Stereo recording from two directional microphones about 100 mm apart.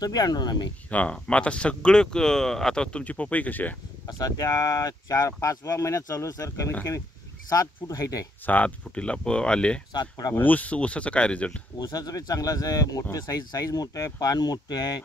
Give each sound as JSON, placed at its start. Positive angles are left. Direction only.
{"t": 0.0, "sound": "speech", "side_deg": 40}
{"t": 0.8, "sound": "speech", "side_deg": 15}
{"t": 4.2, "sound": "speech", "side_deg": 35}
{"t": 8.5, "sound": "speech", "side_deg": 15}
{"t": 9.9, "sound": "speech", "side_deg": 40}
{"t": 10.4, "sound": "speech", "side_deg": 15}
{"t": 11.8, "sound": "speech", "side_deg": 40}